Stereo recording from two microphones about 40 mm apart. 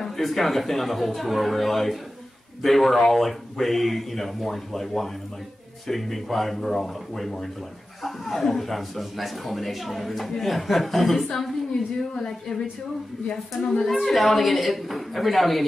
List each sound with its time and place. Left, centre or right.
0.0 s speech: centre
12.0 s speech: centre
13.6 s speech: centre
14.0 s speech: centre